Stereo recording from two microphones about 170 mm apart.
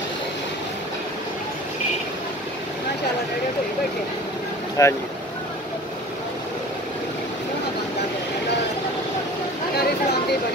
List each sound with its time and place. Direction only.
4.8 s speech: 20° left (ahead or behind)